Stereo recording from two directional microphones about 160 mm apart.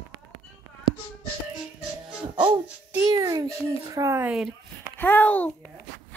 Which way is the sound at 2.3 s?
30° right (ahead or behind).